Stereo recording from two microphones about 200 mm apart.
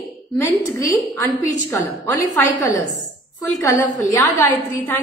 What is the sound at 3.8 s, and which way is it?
Speech, 40° left (ahead or behind).